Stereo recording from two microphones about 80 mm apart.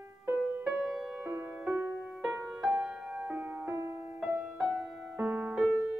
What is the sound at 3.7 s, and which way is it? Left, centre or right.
Music, right.